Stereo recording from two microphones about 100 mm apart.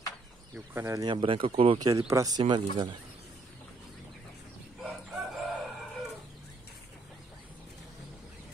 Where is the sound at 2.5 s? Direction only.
50° right (ahead or behind).